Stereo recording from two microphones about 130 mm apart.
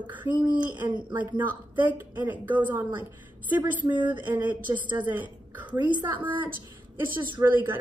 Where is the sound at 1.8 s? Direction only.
15° right (ahead or behind).